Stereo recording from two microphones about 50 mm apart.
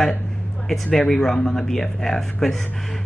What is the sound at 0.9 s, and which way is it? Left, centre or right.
Speech, centre.